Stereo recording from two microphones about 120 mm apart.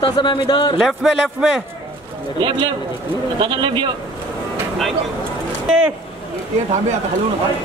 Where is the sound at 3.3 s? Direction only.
40° right (ahead or behind).